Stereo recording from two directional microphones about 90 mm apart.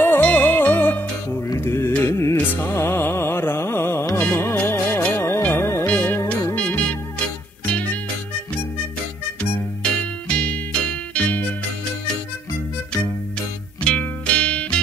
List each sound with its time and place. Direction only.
0.0 s music: 20° left (ahead or behind)
9.4 s music: 10° left (ahead or behind)
13.8 s music: 10° left (ahead or behind)